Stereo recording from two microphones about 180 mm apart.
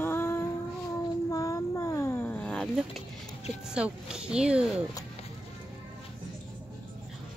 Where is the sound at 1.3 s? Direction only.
20° left (ahead or behind); by 3.0 s centre (ahead or behind).